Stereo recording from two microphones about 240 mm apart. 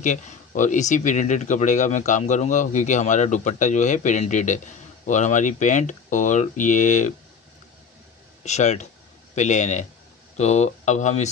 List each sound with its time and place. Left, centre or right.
0.0 s speech: left
8.5 s speech: left